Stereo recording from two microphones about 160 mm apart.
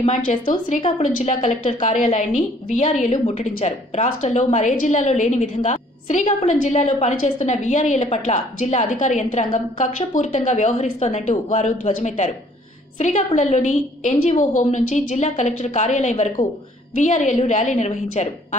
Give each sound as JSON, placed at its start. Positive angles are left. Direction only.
{"t": 0.0, "sound": "a woman's voice", "side_deg": 50}